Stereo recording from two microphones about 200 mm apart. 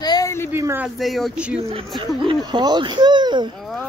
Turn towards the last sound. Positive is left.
turn(degrees=-20)  # may be behind; listen again after turning